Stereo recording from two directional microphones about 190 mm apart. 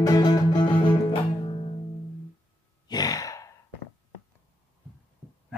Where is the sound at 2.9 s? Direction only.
20° left (ahead or behind).